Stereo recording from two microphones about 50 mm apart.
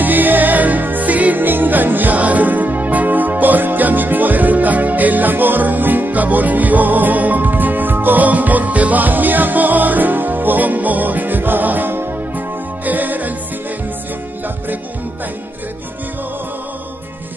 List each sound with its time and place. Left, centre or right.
0.0 s music: right